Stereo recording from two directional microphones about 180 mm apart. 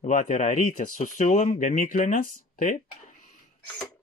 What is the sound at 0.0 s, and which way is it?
Speech, 45° left (ahead or behind).